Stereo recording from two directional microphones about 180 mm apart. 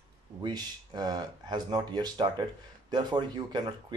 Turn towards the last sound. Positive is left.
turn(degrees=-25)  # may be behind; listen again after turning